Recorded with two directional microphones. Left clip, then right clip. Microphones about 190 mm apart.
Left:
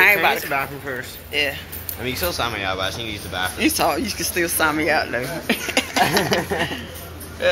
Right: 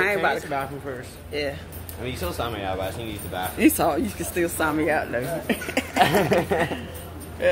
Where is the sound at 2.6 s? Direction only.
Centre (ahead or behind).